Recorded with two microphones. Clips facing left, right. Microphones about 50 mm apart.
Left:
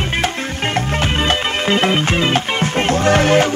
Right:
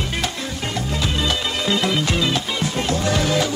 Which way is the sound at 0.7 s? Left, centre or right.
Left.